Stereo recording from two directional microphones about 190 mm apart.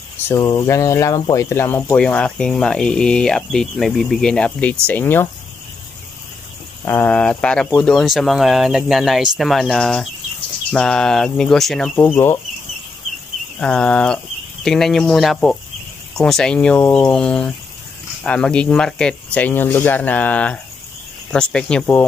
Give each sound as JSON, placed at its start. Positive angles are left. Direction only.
{"t": 0.3, "sound": "speech", "side_deg": 15}
{"t": 6.8, "sound": "speech", "side_deg": 10}
{"t": 13.6, "sound": "speech", "side_deg": 5}